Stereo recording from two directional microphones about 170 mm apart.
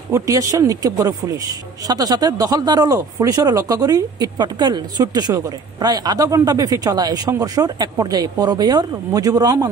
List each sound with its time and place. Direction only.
0.1 s speech: 20° right (ahead or behind)